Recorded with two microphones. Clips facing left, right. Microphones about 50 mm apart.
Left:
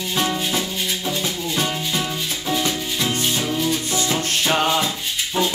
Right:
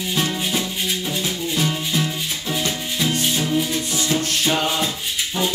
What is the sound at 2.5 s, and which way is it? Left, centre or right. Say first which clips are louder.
Music: left 2 dB; centre.